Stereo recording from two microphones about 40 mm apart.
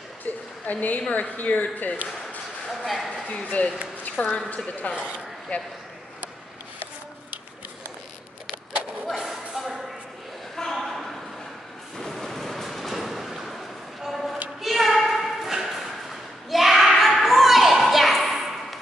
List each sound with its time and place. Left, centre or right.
0.2 s a sound: left
1.1 s speech: left
2.8 s a sound: centre
3.4 s a man's voice: left
4.9 s speech: right
5.5 s a man's voice: left
9.0 s shuffle: centre
10.5 s a sound: centre
17.2 s children playing: centre